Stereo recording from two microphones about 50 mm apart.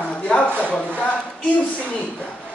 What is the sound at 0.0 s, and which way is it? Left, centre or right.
Speech, left.